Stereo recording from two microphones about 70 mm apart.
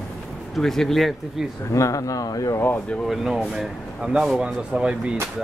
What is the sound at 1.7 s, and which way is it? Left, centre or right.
Speech, left.